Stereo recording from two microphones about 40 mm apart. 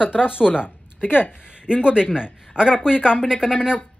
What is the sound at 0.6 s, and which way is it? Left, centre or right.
Speech, left.